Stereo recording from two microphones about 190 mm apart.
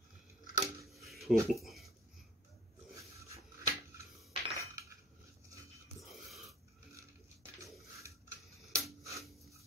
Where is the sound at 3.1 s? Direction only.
15° right (ahead or behind).